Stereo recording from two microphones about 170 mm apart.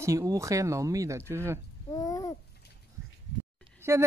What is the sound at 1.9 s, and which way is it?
Babbling, 20° left (ahead or behind).